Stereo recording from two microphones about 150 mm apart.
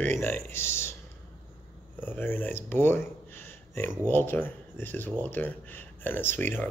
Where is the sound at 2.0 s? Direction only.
15° left (ahead or behind).